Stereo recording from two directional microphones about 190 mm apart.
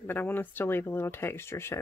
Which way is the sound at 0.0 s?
10° left (ahead or behind).